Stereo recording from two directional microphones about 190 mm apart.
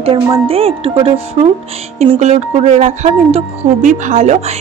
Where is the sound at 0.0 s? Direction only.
30° right (ahead or behind).